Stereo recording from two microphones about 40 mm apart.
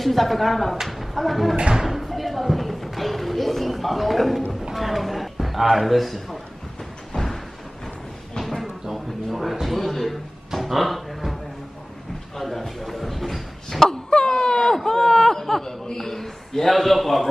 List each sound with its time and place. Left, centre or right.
0.0 s a man's voice: centre
7.1 s slam: left
8.4 s drawer open or close: centre
8.6 s a sound: centre
10.5 s music: centre
12.4 s a sound: centre
14.1 s wail: centre
14.9 s chuckle: centre